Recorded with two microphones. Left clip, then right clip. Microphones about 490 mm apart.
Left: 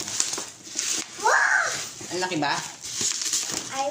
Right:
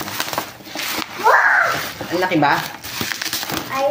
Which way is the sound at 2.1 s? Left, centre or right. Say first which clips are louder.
Right 10 dB; left.